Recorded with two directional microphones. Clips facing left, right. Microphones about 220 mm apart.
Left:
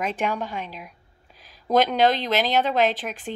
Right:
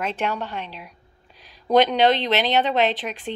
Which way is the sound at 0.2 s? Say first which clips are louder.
Even; 10° left (ahead or behind).